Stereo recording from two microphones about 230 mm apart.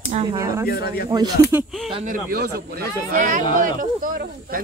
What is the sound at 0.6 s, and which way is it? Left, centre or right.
Speech, left.